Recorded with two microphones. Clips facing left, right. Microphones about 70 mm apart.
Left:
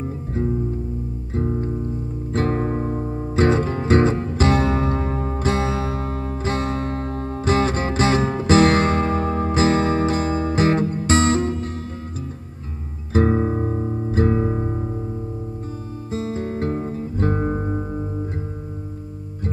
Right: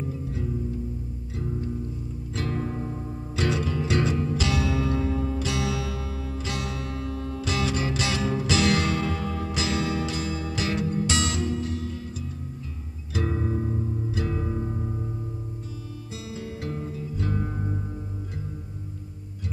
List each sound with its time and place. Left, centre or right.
0.0 s music: left
13.1 s music: left
16.1 s music: left